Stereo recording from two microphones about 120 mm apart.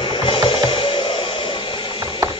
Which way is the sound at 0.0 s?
45° left (ahead or behind).